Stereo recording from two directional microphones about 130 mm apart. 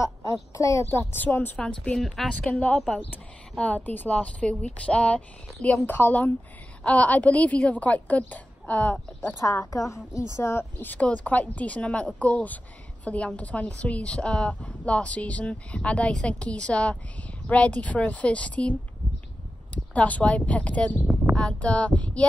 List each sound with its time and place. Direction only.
0.0 s a woman's voice: 25° left (ahead or behind); by 9.3 s 10° left (ahead or behind)
9.4 s a woman's voice: 25° left (ahead or behind); by 22.2 s 10° left (ahead or behind)